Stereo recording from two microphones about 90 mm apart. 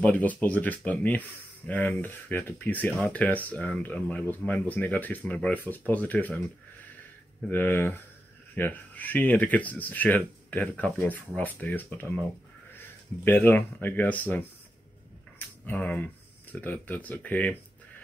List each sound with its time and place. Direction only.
0.0 s speech: 15° left (ahead or behind)
7.4 s speech: 20° left (ahead or behind)
15.3 s a sound: 15° left (ahead or behind)
16.6 s speech: 20° left (ahead or behind)